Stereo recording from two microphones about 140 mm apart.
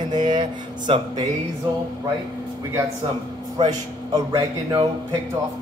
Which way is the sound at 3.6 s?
30° right (ahead or behind).